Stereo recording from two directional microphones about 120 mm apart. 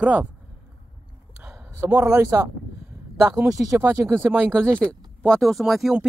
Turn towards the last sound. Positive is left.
turn(degrees=-5)  # may be behind; listen again after turning